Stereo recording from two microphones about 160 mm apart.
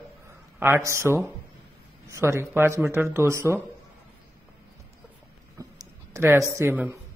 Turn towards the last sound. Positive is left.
turn(degrees=-15)  # may be behind; listen again after turning